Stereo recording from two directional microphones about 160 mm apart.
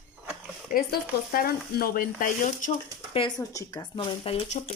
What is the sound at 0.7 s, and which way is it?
Speech, 60° left (ahead or behind).